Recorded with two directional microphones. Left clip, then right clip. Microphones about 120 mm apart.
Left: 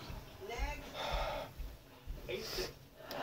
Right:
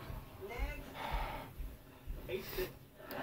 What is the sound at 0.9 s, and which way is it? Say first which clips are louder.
Gasp: left 3 dB; 10° left (ahead or behind).